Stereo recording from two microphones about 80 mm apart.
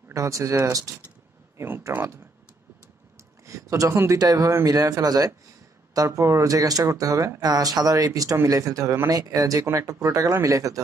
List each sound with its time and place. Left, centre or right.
0.1 s speech: right
3.4 s speech: right
3.9 s speech: right
4.2 s speech: right
5.9 s speech: right